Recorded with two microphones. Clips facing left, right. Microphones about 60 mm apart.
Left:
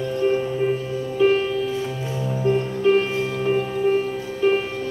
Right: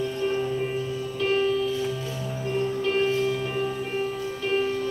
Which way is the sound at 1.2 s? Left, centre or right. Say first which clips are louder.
Left 9 dB; centre.